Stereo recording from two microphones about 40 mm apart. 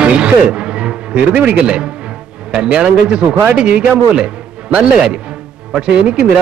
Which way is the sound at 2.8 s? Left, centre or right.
Right.